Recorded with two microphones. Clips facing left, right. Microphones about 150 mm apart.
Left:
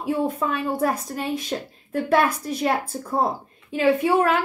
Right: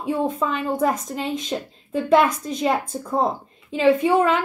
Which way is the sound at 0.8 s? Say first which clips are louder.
Right 2 dB; 10° left (ahead or behind).